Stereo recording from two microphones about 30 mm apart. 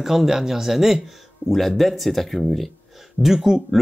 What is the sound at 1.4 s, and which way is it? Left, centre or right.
Speech, right.